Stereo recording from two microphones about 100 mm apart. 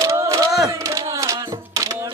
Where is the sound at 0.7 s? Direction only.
35° right (ahead or behind).